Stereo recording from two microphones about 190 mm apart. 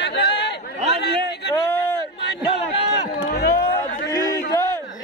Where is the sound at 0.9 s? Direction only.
60° left (ahead or behind).